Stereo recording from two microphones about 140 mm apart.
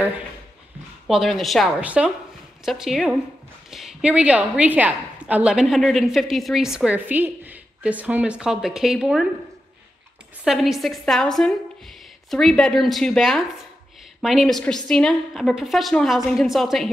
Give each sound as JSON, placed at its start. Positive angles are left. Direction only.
{"t": 1.0, "sound": "a woman's voice", "side_deg": 0}
{"t": 10.4, "sound": "a woman's voice", "side_deg": 0}